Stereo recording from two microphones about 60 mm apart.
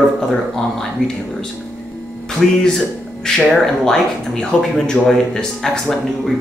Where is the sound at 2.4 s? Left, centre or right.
Centre.